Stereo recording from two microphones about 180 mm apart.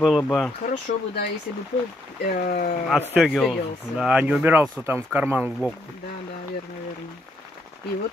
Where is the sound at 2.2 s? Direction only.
55° left (ahead or behind).